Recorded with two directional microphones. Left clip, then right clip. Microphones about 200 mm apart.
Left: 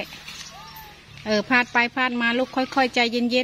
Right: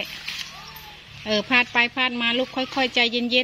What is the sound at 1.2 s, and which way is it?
Speech, 5° left (ahead or behind).